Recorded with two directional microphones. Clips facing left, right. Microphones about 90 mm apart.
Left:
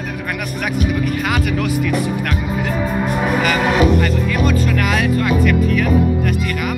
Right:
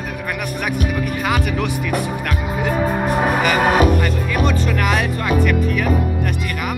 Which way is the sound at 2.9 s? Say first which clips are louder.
Even; 40° right (ahead or behind).